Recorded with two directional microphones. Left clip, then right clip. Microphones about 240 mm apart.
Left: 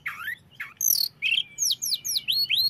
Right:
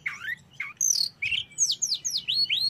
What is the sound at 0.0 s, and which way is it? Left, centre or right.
Bird, centre.